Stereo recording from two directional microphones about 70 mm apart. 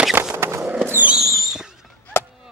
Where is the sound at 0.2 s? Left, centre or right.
Right.